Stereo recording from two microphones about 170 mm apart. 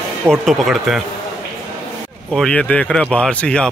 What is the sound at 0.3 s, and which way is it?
Speech, centre (ahead or behind).